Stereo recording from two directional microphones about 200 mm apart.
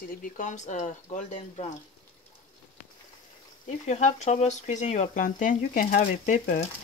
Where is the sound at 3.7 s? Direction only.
35° left (ahead or behind).